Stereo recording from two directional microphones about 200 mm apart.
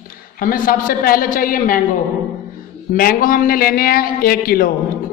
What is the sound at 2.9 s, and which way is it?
A man's voice, 45° left (ahead or behind).